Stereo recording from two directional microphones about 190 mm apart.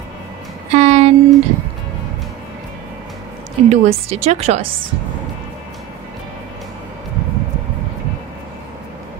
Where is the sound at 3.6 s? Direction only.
35° right (ahead or behind).